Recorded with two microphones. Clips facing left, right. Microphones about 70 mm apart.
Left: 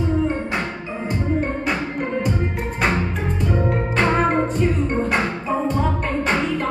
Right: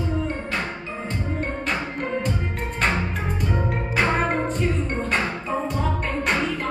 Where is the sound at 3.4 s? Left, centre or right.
Centre.